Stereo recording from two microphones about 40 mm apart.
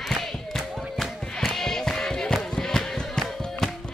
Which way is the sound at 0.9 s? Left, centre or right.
Centre.